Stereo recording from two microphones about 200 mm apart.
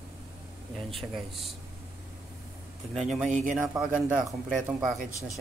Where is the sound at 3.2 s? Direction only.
40° right (ahead or behind).